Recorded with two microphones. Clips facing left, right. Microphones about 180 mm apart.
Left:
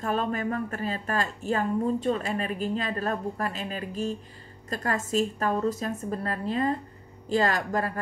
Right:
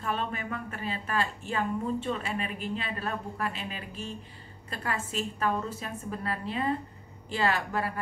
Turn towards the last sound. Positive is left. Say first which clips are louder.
# left 3 dB
turn(degrees=40)  # may be behind; listen again after turning